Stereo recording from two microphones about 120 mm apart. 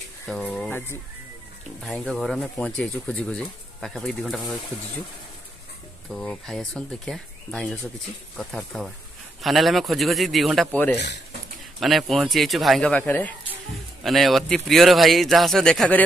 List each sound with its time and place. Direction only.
0.3 s speech: centre (ahead or behind)
0.7 s music: 15° left (ahead or behind)
1.8 s speech: 5° left (ahead or behind)
6.1 s speech: 5° left (ahead or behind)
11.8 s speech: centre (ahead or behind)
12.9 s speech: 15° left (ahead or behind)
14.0 s speech: centre (ahead or behind)